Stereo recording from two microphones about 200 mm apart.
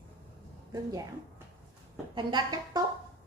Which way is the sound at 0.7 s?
20° right (ahead or behind).